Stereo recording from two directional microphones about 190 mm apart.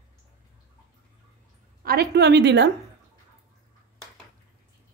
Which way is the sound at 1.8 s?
60° right (ahead or behind).